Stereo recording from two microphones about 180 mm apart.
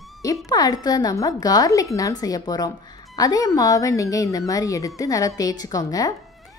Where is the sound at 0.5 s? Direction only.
20° left (ahead or behind).